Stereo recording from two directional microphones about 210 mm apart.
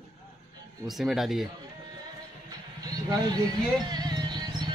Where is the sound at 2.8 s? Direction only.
20° right (ahead or behind).